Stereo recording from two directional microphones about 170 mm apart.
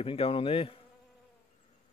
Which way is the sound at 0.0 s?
35° left (ahead or behind).